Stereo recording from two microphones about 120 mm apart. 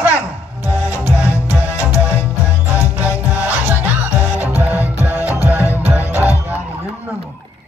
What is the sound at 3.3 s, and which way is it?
Music, 15° right (ahead or behind).